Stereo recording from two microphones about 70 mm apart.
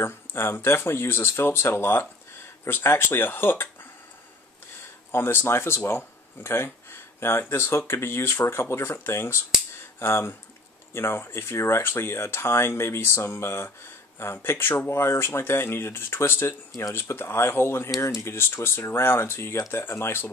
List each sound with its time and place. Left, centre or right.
0.0 s speech: left
5.1 s speech: left
18.0 s speech: left
18.3 s speech: left